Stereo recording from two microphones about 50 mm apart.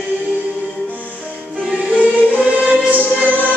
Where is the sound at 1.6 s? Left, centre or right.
Right.